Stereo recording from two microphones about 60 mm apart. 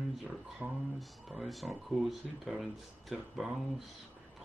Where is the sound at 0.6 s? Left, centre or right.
Centre.